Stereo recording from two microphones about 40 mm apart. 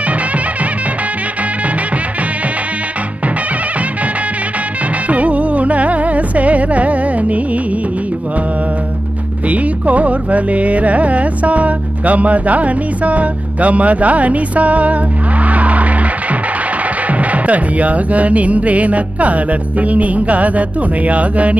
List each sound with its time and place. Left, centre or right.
5.0 s music: right
9.5 s music: right